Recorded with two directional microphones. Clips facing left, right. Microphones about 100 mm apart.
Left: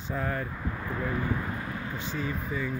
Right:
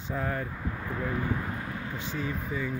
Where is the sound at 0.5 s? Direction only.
75° left (ahead or behind).